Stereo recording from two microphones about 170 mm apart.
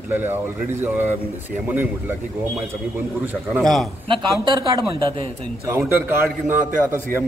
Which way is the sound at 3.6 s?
Centre (ahead or behind).